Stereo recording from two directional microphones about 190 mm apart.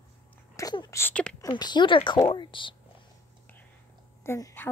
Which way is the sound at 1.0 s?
5° left (ahead or behind).